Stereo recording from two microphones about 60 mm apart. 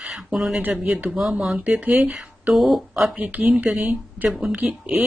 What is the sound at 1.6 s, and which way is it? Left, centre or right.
Speech, right.